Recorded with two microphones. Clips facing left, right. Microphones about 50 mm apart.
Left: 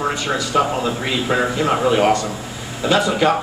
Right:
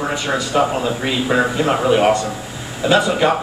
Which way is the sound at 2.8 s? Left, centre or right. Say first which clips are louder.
Right 1 dB; right.